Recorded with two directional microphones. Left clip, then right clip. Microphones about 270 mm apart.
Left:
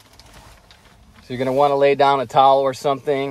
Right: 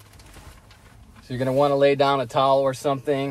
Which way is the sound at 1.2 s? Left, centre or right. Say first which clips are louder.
Left 4 dB; left.